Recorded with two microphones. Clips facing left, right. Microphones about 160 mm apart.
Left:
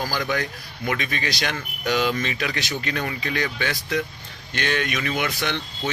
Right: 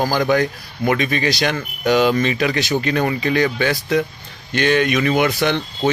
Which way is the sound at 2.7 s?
90° right.